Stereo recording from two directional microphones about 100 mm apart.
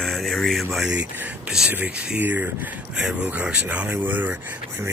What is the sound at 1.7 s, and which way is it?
Speech, 15° right (ahead or behind).